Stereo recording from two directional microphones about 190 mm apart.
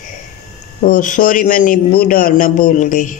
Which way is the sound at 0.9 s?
45° left (ahead or behind).